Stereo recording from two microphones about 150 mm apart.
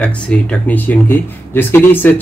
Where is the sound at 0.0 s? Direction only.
5° left (ahead or behind).